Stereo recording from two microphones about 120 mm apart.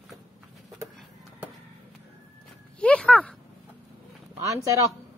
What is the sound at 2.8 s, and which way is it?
Speech, 10° left (ahead or behind).